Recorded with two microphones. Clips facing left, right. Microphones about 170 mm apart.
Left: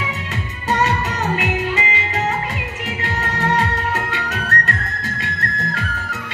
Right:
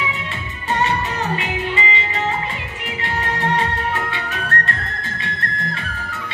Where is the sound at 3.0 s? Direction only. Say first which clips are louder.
Right 1 dB; 45° left (ahead or behind).